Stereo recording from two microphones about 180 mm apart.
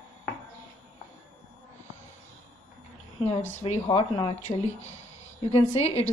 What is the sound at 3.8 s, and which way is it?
Speech, 30° left (ahead or behind).